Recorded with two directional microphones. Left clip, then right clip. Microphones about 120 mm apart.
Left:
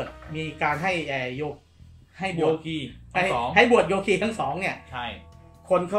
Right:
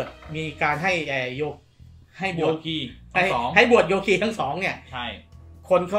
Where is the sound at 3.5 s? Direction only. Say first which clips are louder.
Right 1 dB; 15° right (ahead or behind).